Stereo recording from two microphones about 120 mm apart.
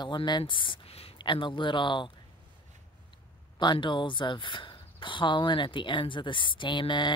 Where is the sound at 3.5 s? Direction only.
40° left (ahead or behind).